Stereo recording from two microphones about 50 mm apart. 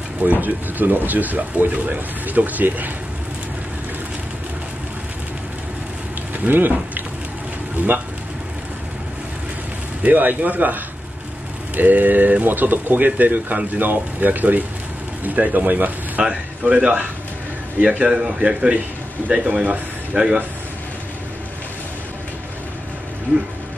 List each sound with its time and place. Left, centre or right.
0.2 s speech: right
6.4 s speech: right
10.0 s speech: right
16.2 s speech: right
18.0 s a man's voice: centre